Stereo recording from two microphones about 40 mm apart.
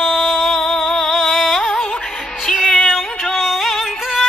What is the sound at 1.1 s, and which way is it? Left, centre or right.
Music, centre.